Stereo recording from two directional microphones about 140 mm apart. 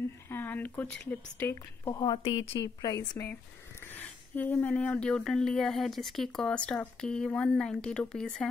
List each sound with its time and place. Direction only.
0.3 s speech: 15° left (ahead or behind)
2.0 s a woman's voice: 35° left (ahead or behind)
2.9 s speech: 20° left (ahead or behind); by 8.5 s 5° left (ahead or behind)